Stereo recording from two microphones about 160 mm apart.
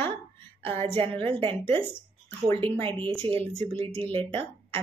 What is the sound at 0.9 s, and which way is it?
Speech, 15° left (ahead or behind).